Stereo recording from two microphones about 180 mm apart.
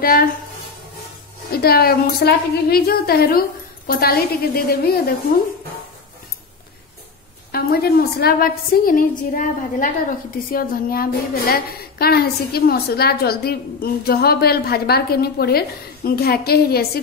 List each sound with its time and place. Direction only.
0.0 s a woman's voice: 55° left (ahead or behind)
1.5 s a woman's voice: 60° left (ahead or behind)
7.5 s a woman's voice: 60° left (ahead or behind)